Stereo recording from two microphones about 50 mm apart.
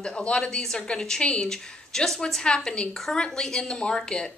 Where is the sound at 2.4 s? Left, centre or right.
Centre.